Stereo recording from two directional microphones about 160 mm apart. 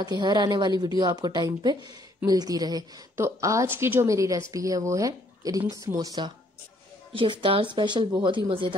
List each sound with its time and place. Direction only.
0.0 s a woman's voice: 25° right (ahead or behind)